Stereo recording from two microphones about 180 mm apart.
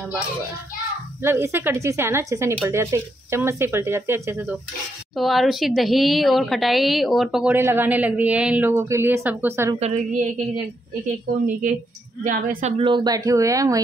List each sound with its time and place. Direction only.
1.2 s speech: 15° right (ahead or behind)
5.1 s speech: centre (ahead or behind)
9.8 s a woman's voice: 40° right (ahead or behind)
12.3 s a woman's voice: 45° right (ahead or behind)
12.7 s speech: 25° right (ahead or behind)